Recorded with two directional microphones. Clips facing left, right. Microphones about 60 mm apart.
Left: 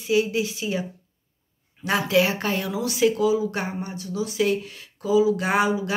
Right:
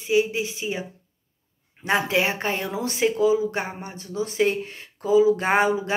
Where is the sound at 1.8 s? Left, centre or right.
Right.